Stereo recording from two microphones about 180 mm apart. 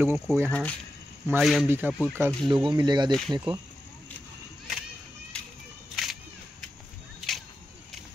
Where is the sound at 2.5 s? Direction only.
25° right (ahead or behind).